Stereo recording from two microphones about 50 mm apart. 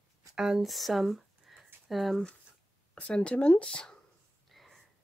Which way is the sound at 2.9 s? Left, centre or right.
Left.